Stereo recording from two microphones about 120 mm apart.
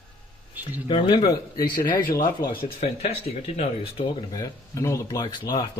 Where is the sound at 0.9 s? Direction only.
45° left (ahead or behind).